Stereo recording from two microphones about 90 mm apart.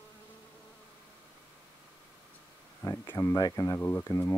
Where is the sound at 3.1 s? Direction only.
35° left (ahead or behind).